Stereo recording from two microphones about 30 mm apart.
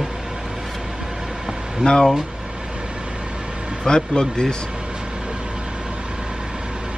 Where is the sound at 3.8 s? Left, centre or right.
Left.